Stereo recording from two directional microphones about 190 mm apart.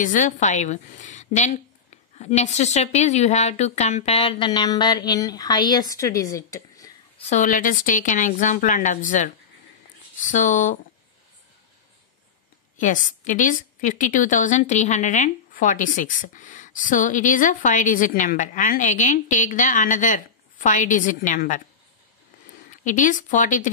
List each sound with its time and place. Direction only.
0.0 s a woman's voice: 40° left (ahead or behind); by 6.9 s 15° left (ahead or behind)
7.2 s a woman's voice: 40° left (ahead or behind)
12.7 s a woman's voice: 40° left (ahead or behind)
22.7 s a woman's voice: 45° left (ahead or behind)